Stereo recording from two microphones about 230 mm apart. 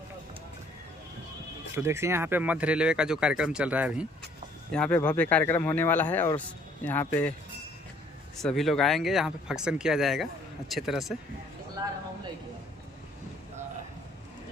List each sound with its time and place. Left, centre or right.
1.8 s speech: centre
4.7 s speech: centre
8.4 s speech: centre
11.8 s a sound: centre